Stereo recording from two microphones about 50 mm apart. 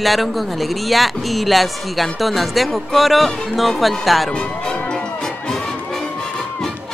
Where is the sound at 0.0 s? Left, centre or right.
Centre.